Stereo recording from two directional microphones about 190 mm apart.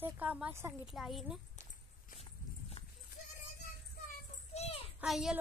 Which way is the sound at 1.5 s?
40° left (ahead or behind).